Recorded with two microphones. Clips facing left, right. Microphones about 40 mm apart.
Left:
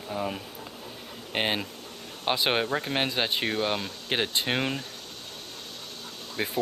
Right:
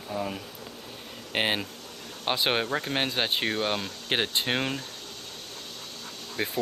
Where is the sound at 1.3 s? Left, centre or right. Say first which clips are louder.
Right 1 dB; centre.